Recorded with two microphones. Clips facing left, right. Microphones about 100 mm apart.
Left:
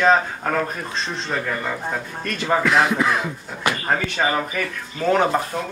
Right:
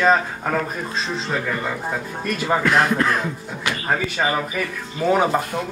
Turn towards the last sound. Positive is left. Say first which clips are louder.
# even
turn(degrees=-10)  # may be behind; listen again after turning